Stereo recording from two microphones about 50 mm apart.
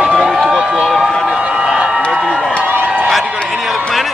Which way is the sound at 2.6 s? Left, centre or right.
Right.